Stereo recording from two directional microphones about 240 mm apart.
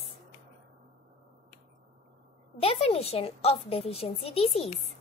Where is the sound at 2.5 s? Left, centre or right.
Left.